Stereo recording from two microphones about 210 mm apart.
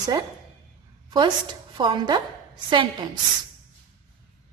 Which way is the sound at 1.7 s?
20° right (ahead or behind).